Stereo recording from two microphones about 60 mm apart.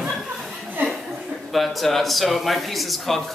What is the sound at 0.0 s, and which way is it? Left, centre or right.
Chuckle, centre.